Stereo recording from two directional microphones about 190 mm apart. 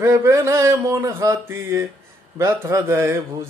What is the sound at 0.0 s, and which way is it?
Mantra, 15° right (ahead or behind).